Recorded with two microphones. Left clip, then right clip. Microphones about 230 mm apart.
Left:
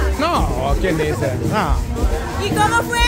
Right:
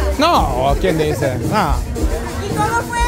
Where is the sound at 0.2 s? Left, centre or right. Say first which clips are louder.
Right 6 dB; right.